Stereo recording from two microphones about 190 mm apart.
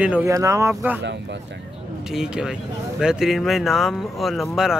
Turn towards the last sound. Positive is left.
turn(degrees=0)  # may be behind; listen again after turning